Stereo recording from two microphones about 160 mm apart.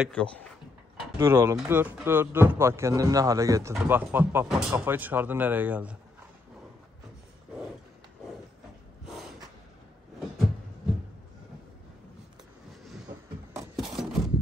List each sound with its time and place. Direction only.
0.1 s speech: 5° left (ahead or behind)
1.1 s a man's voice: 15° right (ahead or behind)
3.7 s a man's voice: 10° right (ahead or behind)
9.0 s snort: 5° right (ahead or behind)
13.7 s a sound: centre (ahead or behind)